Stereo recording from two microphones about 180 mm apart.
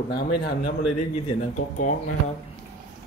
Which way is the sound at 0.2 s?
60° left (ahead or behind).